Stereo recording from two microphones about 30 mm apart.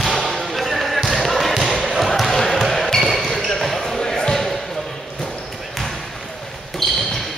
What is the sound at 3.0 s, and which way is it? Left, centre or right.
Basketball bounce, centre.